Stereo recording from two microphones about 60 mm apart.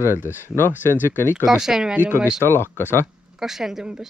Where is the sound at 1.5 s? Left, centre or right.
Centre.